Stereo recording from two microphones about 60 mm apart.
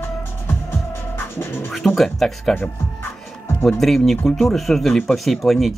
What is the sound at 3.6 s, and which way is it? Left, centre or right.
Speech, centre.